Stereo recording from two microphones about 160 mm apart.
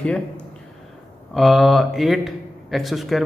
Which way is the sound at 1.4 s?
Centre (ahead or behind).